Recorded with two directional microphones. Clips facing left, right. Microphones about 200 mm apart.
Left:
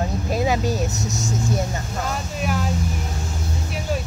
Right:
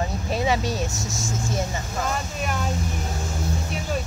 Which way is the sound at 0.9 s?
20° left (ahead or behind).